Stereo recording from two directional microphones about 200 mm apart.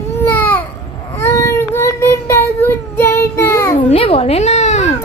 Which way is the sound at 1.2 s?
15° left (ahead or behind).